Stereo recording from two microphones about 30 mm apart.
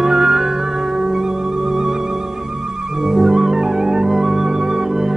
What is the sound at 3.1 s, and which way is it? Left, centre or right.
Music, centre.